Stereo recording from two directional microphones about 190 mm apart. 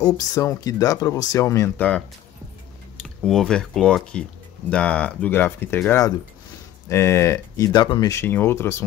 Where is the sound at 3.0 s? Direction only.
5° left (ahead or behind).